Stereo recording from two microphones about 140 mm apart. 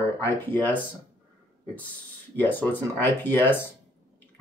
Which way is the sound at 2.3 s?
10° left (ahead or behind).